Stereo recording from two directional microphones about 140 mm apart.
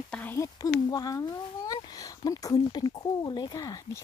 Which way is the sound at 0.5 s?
25° left (ahead or behind).